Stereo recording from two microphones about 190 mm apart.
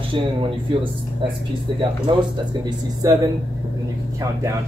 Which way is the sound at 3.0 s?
15° right (ahead or behind).